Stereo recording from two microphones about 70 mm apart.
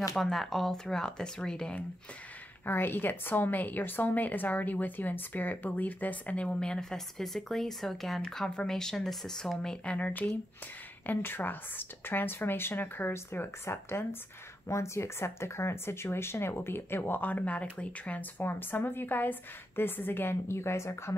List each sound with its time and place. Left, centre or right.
0.1 s speech: centre
2.6 s a woman's voice: left; by 9.9 s centre
9.9 s a woman's voice: left
18.4 s speech: left